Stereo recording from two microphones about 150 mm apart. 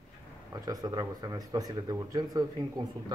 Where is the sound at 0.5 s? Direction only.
25° right (ahead or behind).